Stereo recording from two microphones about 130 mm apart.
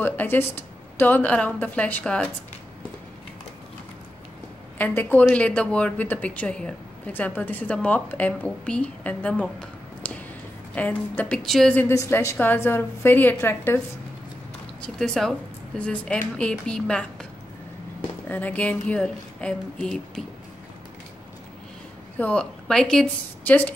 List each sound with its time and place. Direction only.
0.0 s speech: 15° left (ahead or behind)
4.7 s speech: 10° left (ahead or behind)
11.9 s speech: 20° left (ahead or behind)
14.8 s speech: 5° left (ahead or behind)
18.3 s speech: 10° left (ahead or behind)
22.2 s speech: 5° left (ahead or behind)